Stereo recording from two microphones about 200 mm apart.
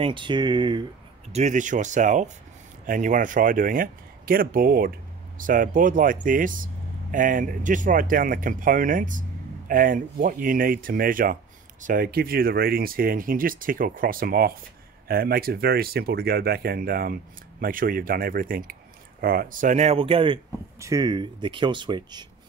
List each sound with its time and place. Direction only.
0.0 s speech: 25° right (ahead or behind)
1.3 s speech: 35° right (ahead or behind)